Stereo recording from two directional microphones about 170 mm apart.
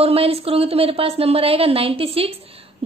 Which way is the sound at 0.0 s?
35° right (ahead or behind).